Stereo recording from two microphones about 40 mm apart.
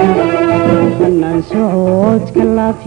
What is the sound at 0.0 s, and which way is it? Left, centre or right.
Music, left.